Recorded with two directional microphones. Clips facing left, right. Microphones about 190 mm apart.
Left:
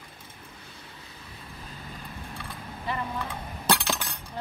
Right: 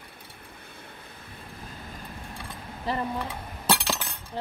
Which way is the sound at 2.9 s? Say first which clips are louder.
Right 3 dB; 35° right (ahead or behind).